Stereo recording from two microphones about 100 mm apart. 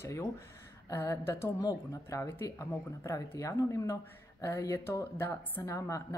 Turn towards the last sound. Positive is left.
turn(degrees=30)  # may be behind; listen again after turning